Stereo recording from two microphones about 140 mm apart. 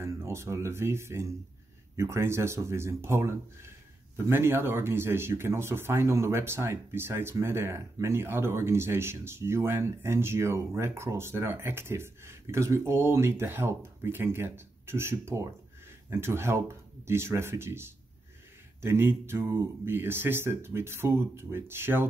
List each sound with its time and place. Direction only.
0.0 s speech: 20° right (ahead or behind)